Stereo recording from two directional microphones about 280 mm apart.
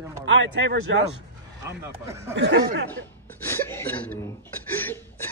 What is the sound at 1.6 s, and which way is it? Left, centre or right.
Speech, centre.